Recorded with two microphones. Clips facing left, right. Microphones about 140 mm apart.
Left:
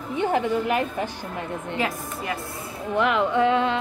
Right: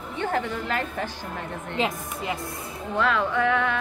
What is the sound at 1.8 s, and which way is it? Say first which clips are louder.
Speech: right 3 dB; 20° right (ahead or behind).